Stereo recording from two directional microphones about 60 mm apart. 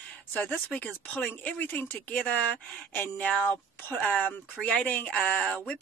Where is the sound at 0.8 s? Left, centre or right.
Left.